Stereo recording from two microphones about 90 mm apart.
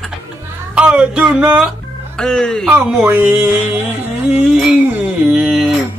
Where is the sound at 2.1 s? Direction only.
10° left (ahead or behind).